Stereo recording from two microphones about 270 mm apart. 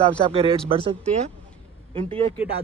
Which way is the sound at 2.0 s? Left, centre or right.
Right.